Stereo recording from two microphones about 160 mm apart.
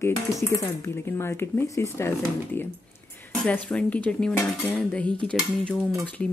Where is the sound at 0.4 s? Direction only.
15° left (ahead or behind).